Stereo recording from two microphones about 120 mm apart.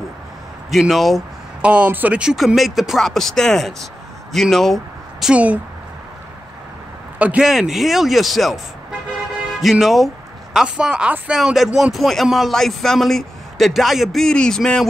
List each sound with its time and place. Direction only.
0.7 s speech: centre (ahead or behind)
1.7 s speech: 15° right (ahead or behind); by 5.3 s centre (ahead or behind)
5.3 s speech: 10° right (ahead or behind)
7.2 s speech: 10° right (ahead or behind)
9.6 s speech: centre (ahead or behind)